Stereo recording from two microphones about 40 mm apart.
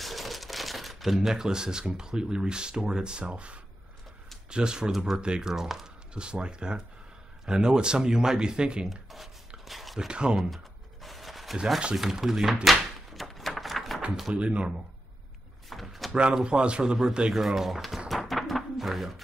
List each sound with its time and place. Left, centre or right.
0.0 s crumpling: centre
2.0 s speech: centre
5.5 s speech: centre
6.1 s speech: right
8.8 s shuffling cards: centre
9.7 s a sound: centre
9.9 s speech: right
10.5 s a sound: centre
11.9 s speech: centre
12.6 s a sound: centre
14.3 s speech: right
15.7 s drawer open or close: centre
16.1 s speech: right
17.3 s a sound: centre